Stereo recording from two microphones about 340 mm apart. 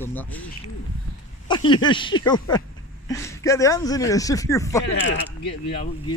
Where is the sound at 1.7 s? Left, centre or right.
Centre.